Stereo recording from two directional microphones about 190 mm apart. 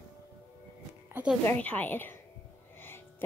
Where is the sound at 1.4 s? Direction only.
10° left (ahead or behind).